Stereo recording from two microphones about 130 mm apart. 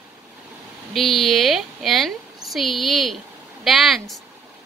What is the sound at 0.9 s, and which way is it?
A woman's voice, centre (ahead or behind).